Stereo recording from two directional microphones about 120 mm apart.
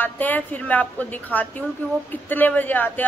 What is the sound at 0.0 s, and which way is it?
Speech, 15° left (ahead or behind).